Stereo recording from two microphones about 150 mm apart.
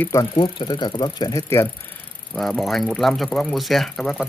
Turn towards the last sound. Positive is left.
turn(degrees=0)  # may be behind; listen again after turning